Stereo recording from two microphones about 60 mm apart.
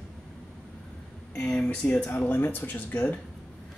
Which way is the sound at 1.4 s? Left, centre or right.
Centre.